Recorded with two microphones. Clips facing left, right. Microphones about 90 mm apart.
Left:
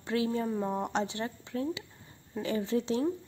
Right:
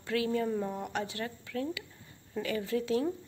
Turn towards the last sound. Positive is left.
turn(degrees=25)  # may be behind; listen again after turning